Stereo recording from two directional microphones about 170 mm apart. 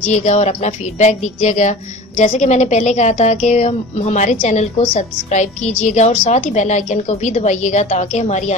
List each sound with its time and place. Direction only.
0.0 s a woman's voice: 40° left (ahead or behind)